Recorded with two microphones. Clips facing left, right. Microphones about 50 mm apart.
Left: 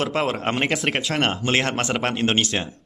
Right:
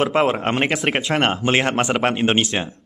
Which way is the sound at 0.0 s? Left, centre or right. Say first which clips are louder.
Right 5 dB; centre.